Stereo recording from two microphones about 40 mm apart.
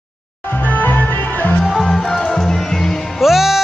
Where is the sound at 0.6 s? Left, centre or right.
Left.